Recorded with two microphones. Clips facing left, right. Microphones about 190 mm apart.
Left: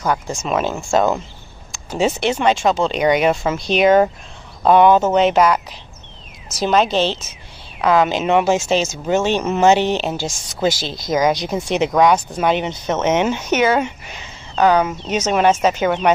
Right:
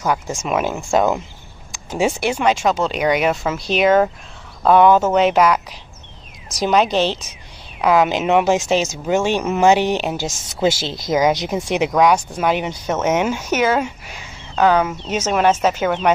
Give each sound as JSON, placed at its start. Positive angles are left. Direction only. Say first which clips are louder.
{"t": 0.0, "sound": "speech", "louder": "even", "side_deg": -10}
{"t": 15.4, "sound": "speech", "louder": "left 1 dB", "side_deg": 10}